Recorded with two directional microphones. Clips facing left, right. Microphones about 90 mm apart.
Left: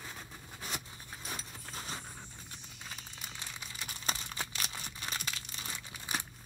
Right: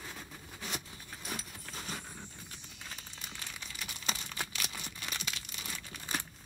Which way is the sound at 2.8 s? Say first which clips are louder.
Even; 10° left (ahead or behind).